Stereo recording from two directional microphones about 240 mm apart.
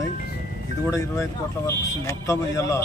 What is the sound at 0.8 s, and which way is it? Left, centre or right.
A man's voice, centre.